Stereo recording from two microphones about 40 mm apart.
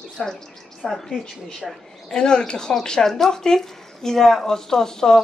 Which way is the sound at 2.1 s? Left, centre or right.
Centre.